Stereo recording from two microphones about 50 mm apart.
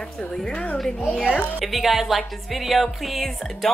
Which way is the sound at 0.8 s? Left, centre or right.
Centre.